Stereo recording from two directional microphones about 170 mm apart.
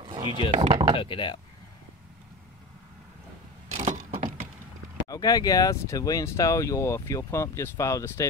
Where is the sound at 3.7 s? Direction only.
45° right (ahead or behind).